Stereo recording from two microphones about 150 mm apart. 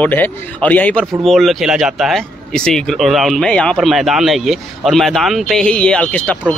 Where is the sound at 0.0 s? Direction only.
10° left (ahead or behind).